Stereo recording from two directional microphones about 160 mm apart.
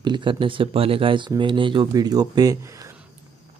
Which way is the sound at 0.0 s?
30° right (ahead or behind).